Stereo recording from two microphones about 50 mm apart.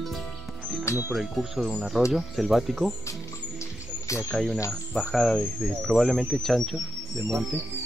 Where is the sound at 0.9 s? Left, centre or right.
Left.